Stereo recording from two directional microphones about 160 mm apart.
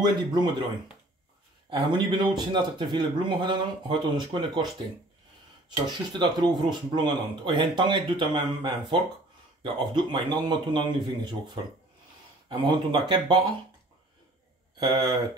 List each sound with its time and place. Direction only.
0.0 s speech: 30° right (ahead or behind)
1.7 s speech: 30° right (ahead or behind)
5.9 s speech: 25° right (ahead or behind)
14.8 s speech: 25° right (ahead or behind)